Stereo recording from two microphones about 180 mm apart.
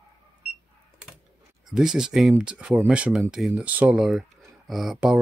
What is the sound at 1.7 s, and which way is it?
Speech, 5° right (ahead or behind).